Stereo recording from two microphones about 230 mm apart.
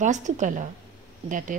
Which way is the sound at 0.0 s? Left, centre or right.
Right.